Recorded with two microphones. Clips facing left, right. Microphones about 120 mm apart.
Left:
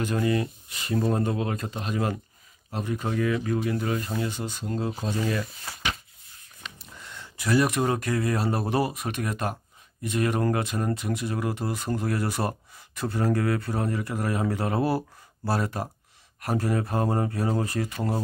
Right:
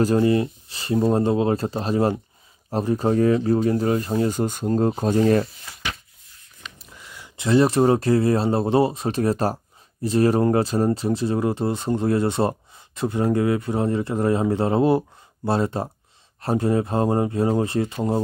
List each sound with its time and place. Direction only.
0.0 s speech: 30° right (ahead or behind)
6.8 s a sound: 5° right (ahead or behind)
7.3 s speech: 25° right (ahead or behind)